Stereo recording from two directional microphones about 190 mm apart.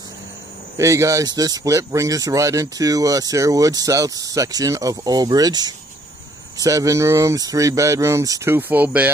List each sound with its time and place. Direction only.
0.7 s speech: 15° right (ahead or behind)